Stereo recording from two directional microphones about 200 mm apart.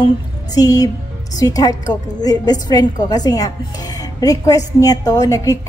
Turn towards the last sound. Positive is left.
turn(degrees=15)  # may be behind; listen again after turning